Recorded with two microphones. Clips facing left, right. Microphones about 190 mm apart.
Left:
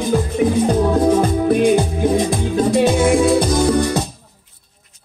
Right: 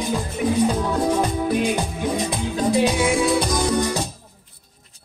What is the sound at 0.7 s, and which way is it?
Music, 45° left (ahead or behind).